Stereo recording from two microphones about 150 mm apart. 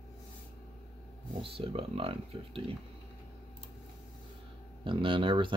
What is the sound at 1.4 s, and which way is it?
Speech, 40° right (ahead or behind).